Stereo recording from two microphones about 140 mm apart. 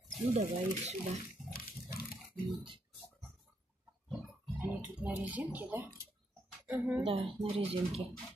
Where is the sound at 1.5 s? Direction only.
90° left.